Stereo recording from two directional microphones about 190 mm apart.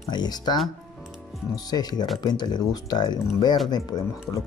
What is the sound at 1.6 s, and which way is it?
Speech, 20° left (ahead or behind).